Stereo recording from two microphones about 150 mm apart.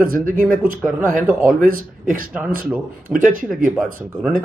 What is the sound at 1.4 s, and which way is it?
Speech, 65° right (ahead or behind).